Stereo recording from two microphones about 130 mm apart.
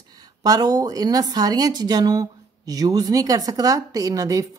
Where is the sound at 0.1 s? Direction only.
30° right (ahead or behind).